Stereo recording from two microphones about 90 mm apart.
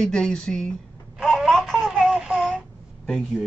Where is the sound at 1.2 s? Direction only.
Centre (ahead or behind).